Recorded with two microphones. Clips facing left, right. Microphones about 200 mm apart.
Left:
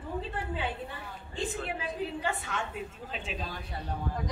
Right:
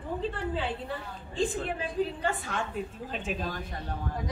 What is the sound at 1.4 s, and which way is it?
A woman's voice, 35° right (ahead or behind).